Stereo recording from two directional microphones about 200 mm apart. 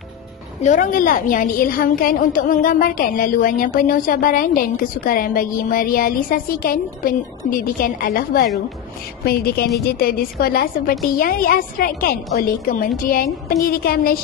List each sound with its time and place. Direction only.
0.6 s a woman's voice: 40° left (ahead or behind)